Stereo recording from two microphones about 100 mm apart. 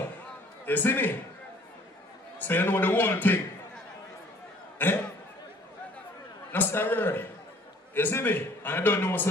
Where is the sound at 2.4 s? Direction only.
20° left (ahead or behind).